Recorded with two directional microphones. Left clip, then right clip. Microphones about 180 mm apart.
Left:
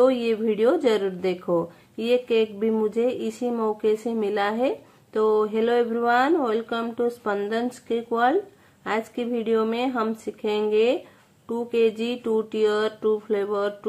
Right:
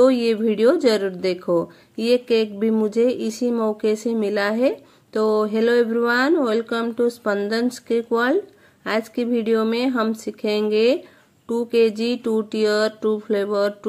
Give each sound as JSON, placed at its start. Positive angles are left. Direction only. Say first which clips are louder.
{"t": 0.0, "sound": "a woman's voice", "louder": "right 4 dB", "side_deg": -30}